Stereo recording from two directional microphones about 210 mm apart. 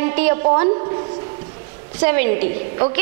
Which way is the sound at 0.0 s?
15° right (ahead or behind).